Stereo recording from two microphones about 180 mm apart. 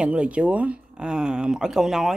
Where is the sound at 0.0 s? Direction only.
5° right (ahead or behind).